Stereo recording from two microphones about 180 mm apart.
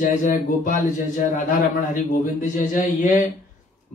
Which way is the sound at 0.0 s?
45° left (ahead or behind).